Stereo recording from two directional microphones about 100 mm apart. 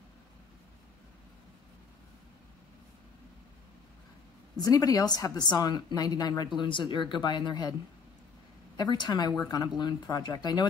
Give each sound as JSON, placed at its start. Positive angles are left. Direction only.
{"t": 4.6, "sound": "speech", "side_deg": 40}
{"t": 8.7, "sound": "speech", "side_deg": 45}